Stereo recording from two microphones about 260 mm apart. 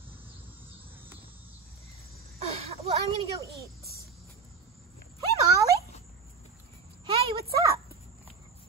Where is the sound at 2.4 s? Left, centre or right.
Right.